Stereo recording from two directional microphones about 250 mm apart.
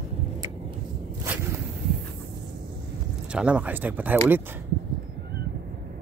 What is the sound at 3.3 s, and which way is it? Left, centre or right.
Speech, centre.